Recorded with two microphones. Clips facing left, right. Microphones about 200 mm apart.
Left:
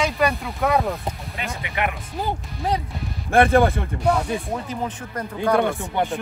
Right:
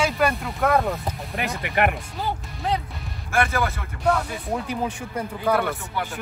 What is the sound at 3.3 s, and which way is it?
Speech, 30° left (ahead or behind).